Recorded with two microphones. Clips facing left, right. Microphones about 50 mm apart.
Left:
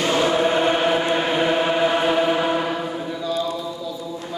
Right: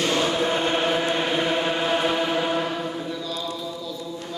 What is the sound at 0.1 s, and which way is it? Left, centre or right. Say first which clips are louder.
Chant: left 4 dB; left.